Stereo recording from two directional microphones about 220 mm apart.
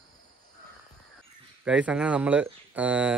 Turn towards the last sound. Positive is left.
turn(degrees=-5)  # may be behind; listen again after turning